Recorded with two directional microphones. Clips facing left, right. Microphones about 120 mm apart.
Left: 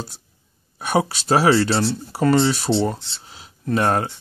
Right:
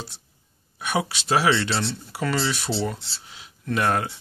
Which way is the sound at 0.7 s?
40° left (ahead or behind).